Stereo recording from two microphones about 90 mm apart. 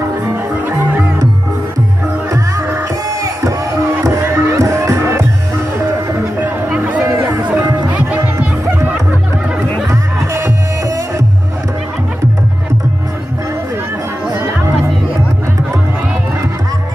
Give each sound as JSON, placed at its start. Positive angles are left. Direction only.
{"t": 2.3, "sound": "music", "side_deg": -35}
{"t": 6.4, "sound": "music", "side_deg": -20}
{"t": 9.8, "sound": "music", "side_deg": -35}